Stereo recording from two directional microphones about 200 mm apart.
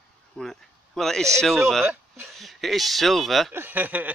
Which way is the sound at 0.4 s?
Centre (ahead or behind).